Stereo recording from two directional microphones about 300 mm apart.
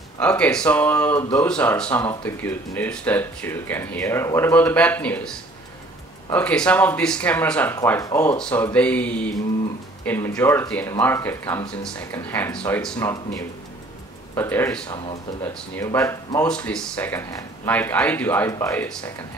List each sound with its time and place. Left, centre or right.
0.2 s speech: centre
6.3 s speech: centre